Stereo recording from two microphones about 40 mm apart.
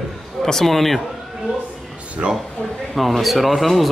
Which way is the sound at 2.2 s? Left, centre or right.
Centre.